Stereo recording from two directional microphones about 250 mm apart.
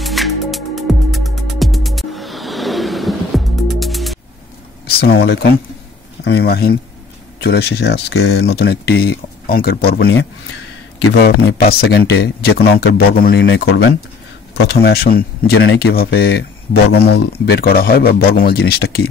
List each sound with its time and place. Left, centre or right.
0.0 s music: centre
4.8 s speech: left
11.2 s speech: left